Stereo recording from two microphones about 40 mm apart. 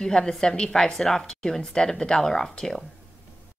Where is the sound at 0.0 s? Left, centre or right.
Centre.